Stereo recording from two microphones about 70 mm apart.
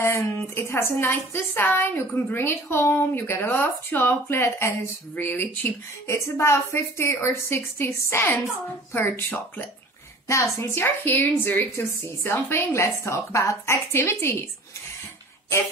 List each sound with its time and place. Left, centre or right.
0.0 s a woman's voice: left
4.4 s a woman's voice: left
5.1 s speech: left
6.0 s a woman's voice: left
10.2 s a woman's voice: left
10.8 s a woman's voice: left
13.9 s a woman's voice: left